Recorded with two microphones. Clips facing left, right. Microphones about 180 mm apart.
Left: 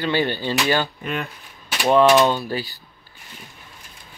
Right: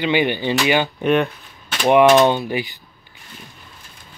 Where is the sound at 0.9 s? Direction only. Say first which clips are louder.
Right 11 dB; 70° right (ahead or behind).